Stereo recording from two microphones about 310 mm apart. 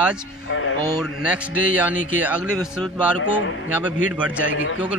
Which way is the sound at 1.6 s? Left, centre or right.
Left.